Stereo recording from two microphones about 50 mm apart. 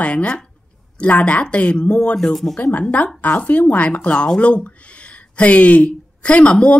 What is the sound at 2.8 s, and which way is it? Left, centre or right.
A woman's voice, left.